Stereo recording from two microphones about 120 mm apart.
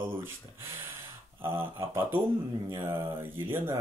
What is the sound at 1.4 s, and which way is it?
Speech, 20° right (ahead or behind).